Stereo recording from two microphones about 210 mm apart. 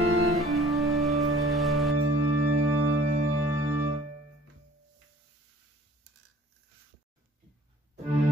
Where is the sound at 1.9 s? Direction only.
90° right.